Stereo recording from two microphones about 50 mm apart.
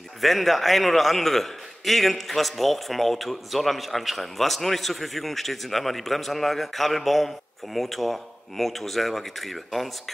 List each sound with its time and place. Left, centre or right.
0.2 s a man's voice: centre